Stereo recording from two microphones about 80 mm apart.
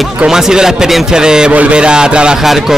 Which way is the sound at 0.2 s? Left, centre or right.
Centre.